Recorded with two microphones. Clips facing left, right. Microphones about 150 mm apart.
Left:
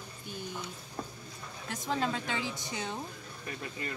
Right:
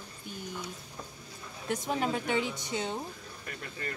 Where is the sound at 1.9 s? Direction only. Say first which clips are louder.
Right 1 dB; 15° right (ahead or behind).